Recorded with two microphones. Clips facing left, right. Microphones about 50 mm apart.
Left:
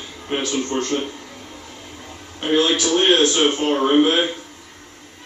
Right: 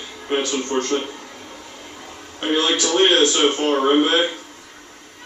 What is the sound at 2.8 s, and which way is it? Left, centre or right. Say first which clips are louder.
Speech: even; centre.